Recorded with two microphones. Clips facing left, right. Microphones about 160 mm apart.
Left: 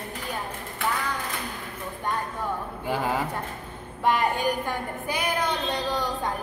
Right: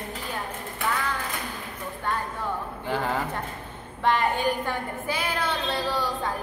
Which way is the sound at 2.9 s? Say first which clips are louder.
Left 1 dB; 10° left (ahead or behind).